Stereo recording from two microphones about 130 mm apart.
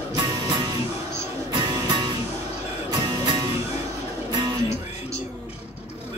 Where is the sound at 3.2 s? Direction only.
30° right (ahead or behind).